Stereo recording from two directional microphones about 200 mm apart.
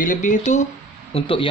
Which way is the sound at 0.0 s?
40° left (ahead or behind).